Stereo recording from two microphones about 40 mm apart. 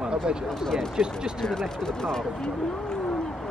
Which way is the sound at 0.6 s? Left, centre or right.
Centre.